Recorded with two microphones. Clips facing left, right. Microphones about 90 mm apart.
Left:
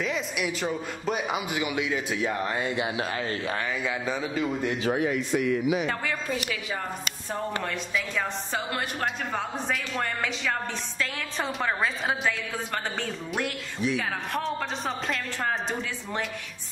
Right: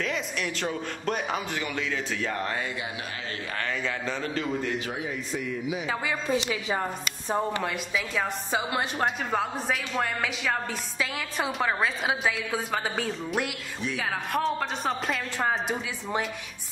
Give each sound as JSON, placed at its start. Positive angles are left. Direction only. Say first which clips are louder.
{"t": 0.0, "sound": "speech", "louder": "left 1 dB", "side_deg": 5}
{"t": 3.8, "sound": "speech", "louder": "left 1 dB", "side_deg": 10}
{"t": 4.9, "sound": "speech", "louder": "left 7 dB", "side_deg": 70}
{"t": 6.3, "sound": "a woman's voice", "louder": "right 4 dB", "side_deg": -25}
{"t": 7.6, "sound": "a woman's voice", "louder": "even", "side_deg": -5}